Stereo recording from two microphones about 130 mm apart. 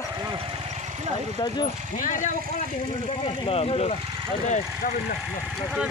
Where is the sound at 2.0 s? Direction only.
80° left.